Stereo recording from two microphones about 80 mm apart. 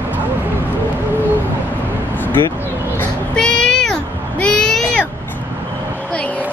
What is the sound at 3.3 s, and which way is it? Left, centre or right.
Meow, centre.